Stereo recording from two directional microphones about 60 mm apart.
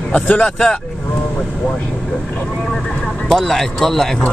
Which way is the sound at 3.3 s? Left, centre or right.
Centre.